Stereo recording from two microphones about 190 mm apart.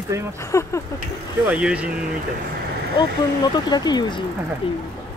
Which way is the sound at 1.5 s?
5° right (ahead or behind).